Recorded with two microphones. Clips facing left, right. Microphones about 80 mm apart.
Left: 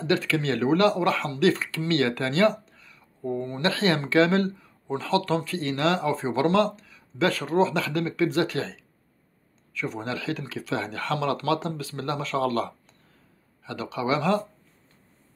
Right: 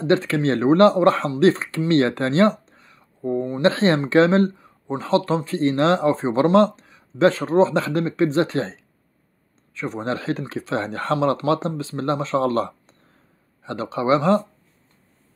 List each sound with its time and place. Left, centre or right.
0.0 s speech: right
3.6 s speech: right